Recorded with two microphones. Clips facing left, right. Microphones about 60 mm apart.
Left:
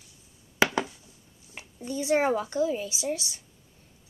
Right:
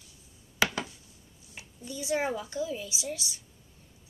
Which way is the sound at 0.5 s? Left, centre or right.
Left.